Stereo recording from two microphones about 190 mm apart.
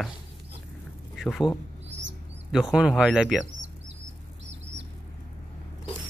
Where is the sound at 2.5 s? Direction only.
5° right (ahead or behind).